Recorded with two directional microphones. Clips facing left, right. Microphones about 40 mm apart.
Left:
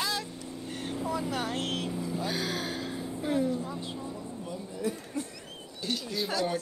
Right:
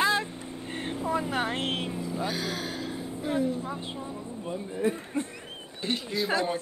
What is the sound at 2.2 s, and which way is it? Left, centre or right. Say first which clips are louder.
Speech: right 1 dB; centre.